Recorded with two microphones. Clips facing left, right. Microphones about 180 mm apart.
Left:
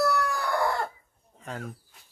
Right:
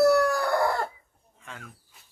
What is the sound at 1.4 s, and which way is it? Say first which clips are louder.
Speech: left 8 dB; 40° left (ahead or behind).